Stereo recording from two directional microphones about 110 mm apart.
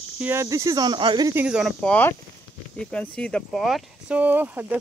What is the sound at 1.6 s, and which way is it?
Speech, 5° left (ahead or behind).